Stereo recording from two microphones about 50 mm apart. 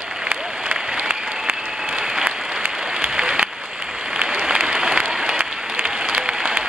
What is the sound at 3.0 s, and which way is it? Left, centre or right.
Applause, centre.